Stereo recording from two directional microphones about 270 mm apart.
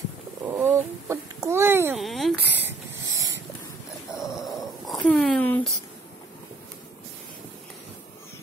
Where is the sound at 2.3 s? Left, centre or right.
Right.